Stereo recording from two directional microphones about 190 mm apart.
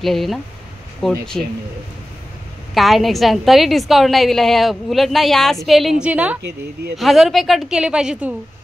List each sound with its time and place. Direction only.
0.0 s a woman's voice: centre (ahead or behind)
2.7 s a woman's voice: centre (ahead or behind)